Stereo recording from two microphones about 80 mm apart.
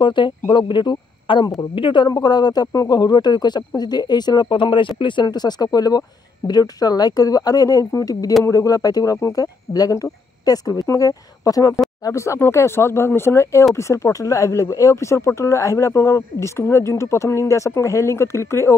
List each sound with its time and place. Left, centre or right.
0.0 s speech: left
2.0 s speech: left
12.0 s speech: left